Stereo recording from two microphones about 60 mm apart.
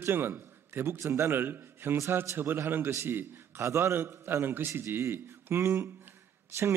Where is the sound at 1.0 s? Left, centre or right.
Right.